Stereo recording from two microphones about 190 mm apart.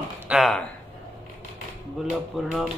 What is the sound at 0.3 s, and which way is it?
Speech, centre (ahead or behind).